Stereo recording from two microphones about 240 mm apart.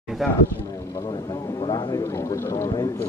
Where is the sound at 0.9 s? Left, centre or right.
Centre.